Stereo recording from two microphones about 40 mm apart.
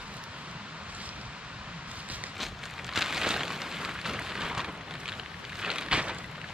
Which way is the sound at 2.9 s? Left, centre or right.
Centre.